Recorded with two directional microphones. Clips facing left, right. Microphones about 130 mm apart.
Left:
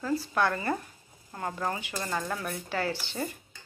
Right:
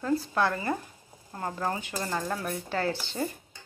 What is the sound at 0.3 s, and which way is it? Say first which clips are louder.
Speech: even; 25° right (ahead or behind).